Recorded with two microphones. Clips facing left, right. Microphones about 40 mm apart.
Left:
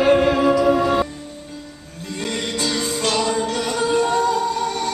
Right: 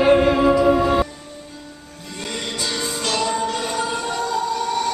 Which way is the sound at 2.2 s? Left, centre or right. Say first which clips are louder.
Left 3 dB; centre.